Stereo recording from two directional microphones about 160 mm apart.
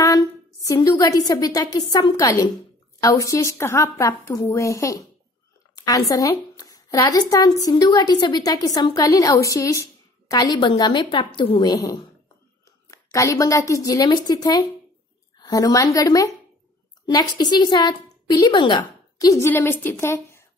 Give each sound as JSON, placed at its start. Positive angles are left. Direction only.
{"t": 0.0, "sound": "a woman's voice", "side_deg": 20}
{"t": 13.1, "sound": "a woman's voice", "side_deg": 20}